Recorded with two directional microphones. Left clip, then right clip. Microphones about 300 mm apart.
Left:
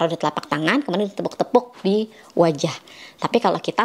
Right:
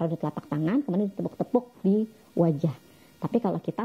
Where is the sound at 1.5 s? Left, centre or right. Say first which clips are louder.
Left 7 dB; centre.